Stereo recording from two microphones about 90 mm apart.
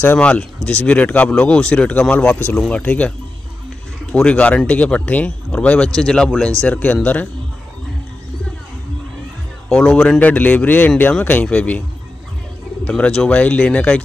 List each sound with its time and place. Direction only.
0.0 s speech: 20° left (ahead or behind)
4.1 s speech: 15° left (ahead or behind)
9.7 s speech: 5° left (ahead or behind)
12.8 s speech: 15° left (ahead or behind)